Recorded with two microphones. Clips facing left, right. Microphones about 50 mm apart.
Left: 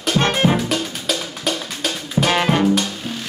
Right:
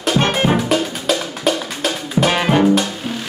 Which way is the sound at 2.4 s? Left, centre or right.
Centre.